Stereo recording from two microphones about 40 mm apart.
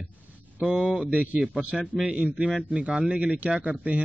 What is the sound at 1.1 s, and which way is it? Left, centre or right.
Speech, right.